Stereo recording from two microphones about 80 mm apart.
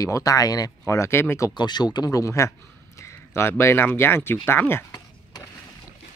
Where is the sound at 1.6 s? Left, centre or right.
Left.